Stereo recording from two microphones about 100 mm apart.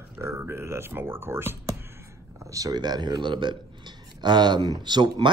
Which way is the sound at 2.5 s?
40° right (ahead or behind).